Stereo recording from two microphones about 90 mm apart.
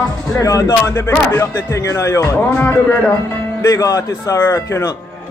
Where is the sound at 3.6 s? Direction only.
40° left (ahead or behind).